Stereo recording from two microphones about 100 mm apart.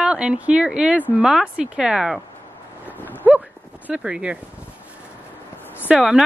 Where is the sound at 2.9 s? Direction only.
20° left (ahead or behind).